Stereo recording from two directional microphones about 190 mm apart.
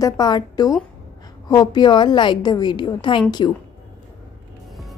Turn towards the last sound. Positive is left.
turn(degrees=25)  # may be behind; listen again after turning